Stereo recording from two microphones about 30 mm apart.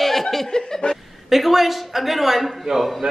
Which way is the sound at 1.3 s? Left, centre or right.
Centre.